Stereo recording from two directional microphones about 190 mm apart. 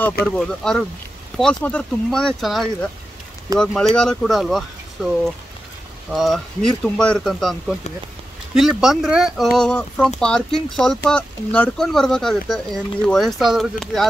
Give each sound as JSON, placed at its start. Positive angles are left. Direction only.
{"t": 0.2, "sound": "speech", "side_deg": 55}
{"t": 0.6, "sound": "speech", "side_deg": 0}
{"t": 6.1, "sound": "speech", "side_deg": 0}